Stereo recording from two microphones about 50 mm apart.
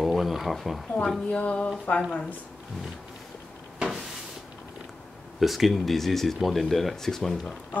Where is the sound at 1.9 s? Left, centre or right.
Left.